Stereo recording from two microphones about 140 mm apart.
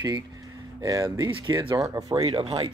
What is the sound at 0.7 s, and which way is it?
Speech, 25° right (ahead or behind).